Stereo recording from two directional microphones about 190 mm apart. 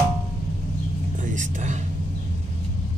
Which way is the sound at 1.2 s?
40° right (ahead or behind).